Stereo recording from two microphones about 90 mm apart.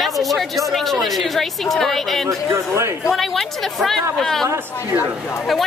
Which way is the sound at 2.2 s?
30° right (ahead or behind).